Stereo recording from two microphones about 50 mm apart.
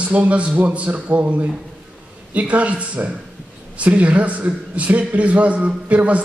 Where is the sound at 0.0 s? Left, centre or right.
Right.